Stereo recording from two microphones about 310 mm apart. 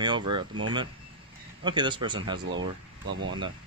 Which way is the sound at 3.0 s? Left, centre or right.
Right.